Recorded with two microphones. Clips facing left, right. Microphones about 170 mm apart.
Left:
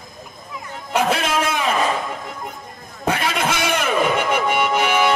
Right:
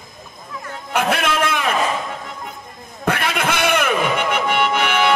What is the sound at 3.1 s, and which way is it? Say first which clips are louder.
Music: even; 60° right (ahead or behind).